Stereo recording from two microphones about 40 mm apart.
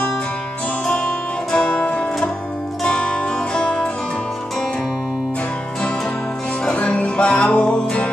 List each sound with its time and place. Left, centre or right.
0.8 s music: left
6.7 s music: left